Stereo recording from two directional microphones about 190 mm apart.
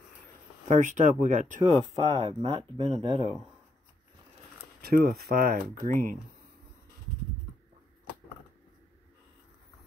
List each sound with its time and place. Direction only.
0.7 s speech: 40° right (ahead or behind)
4.8 s speech: 55° right (ahead or behind)